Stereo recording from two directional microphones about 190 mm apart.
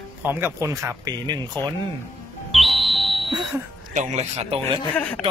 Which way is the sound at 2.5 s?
Centre (ahead or behind).